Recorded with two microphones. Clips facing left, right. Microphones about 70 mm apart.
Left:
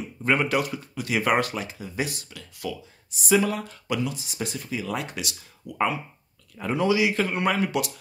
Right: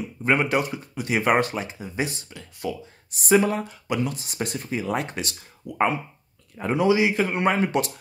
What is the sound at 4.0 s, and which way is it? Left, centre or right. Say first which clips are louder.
Speech: right 2 dB; right.